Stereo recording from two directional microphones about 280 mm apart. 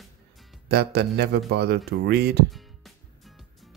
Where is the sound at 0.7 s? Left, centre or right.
Right.